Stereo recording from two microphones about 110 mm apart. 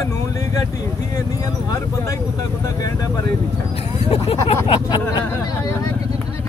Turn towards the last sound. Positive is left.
turn(degrees=65)  # may be behind; listen again after turning